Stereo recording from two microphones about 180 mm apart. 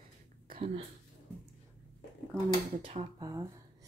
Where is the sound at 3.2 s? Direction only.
20° right (ahead or behind).